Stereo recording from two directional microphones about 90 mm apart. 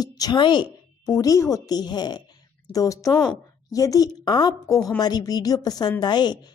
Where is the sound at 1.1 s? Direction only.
40° left (ahead or behind).